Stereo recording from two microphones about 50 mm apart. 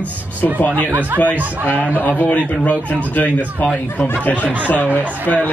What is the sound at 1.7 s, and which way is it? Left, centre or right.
Speech, right.